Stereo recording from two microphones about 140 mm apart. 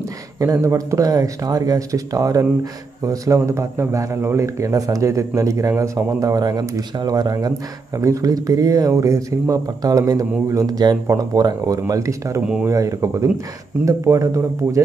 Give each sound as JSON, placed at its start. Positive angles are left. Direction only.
{"t": 0.4, "sound": "a man's voice", "side_deg": -25}
{"t": 12.4, "sound": "speech", "side_deg": -5}
{"t": 12.6, "sound": "a man's voice", "side_deg": -20}